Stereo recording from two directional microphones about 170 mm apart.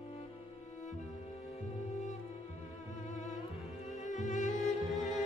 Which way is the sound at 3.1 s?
45° left (ahead or behind).